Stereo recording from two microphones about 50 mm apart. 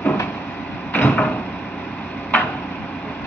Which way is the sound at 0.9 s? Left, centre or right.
Left.